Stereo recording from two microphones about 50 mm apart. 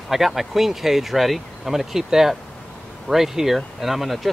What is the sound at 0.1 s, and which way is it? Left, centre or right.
Speech, centre.